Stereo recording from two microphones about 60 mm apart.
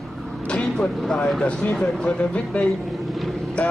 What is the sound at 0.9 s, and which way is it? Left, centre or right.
Speech, centre.